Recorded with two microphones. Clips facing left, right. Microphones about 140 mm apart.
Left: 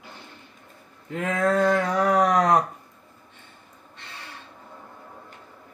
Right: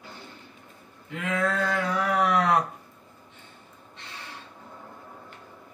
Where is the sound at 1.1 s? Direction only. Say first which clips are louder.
Left 4 dB; 45° left (ahead or behind).